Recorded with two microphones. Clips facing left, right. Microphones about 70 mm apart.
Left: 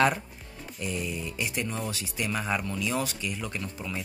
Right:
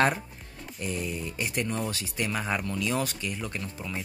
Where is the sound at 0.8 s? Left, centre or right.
Right.